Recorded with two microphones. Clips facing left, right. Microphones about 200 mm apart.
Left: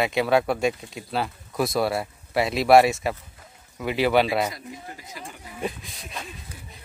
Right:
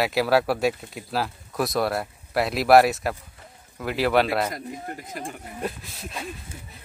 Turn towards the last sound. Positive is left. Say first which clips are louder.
# right 2 dB
turn(degrees=-5)  # may be behind; listen again after turning